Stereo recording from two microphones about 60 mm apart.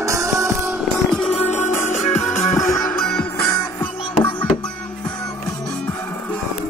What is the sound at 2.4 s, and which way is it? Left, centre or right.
Music, left.